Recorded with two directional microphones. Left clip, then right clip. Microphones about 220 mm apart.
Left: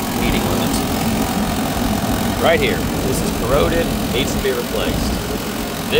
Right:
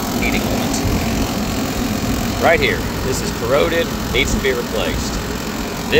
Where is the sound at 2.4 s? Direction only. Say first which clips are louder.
Right 2 dB; 10° left (ahead or behind).